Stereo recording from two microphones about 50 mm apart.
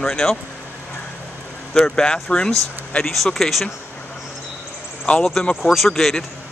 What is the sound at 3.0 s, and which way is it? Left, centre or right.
Speech, centre.